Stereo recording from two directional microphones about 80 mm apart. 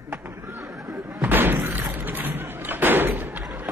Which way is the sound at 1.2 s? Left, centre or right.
Right.